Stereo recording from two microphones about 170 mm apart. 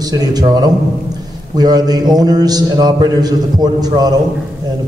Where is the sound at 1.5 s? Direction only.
25° right (ahead or behind).